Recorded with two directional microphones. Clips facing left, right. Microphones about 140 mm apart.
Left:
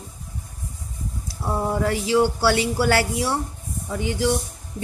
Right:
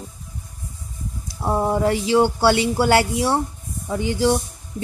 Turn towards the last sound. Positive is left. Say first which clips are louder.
# right 3 dB
turn(degrees=-30)  # may be behind; listen again after turning